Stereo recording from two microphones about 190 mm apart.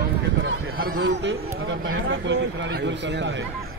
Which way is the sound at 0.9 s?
70° right (ahead or behind).